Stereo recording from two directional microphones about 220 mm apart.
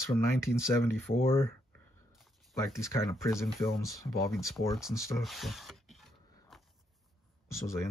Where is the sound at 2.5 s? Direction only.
15° left (ahead or behind).